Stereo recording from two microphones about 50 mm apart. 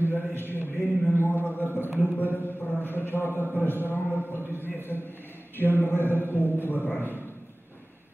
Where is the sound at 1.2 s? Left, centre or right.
Left.